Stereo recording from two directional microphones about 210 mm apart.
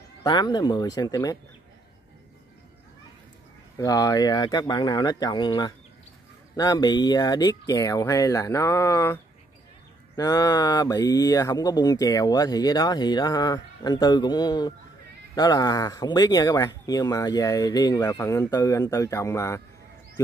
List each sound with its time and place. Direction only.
0.2 s speech: 20° left (ahead or behind)
3.7 s speech: 15° left (ahead or behind)